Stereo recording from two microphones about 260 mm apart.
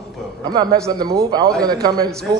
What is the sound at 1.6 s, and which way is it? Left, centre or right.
Speech, centre.